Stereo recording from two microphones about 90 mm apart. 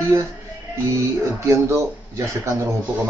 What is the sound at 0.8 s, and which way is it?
Speech, 30° right (ahead or behind).